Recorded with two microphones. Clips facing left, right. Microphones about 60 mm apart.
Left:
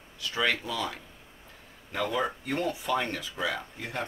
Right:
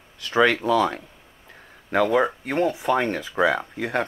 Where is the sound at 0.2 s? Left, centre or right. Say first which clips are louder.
Right 9 dB; right.